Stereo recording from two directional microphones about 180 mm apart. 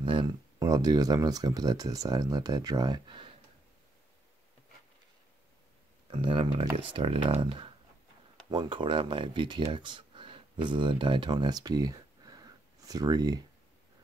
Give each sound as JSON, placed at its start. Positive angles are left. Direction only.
{"t": 0.0, "sound": "speech", "side_deg": -25}
{"t": 6.0, "sound": "speech", "side_deg": -30}